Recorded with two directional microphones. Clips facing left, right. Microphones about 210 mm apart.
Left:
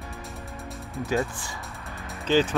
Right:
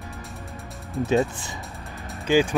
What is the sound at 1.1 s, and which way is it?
Speech, 20° right (ahead or behind).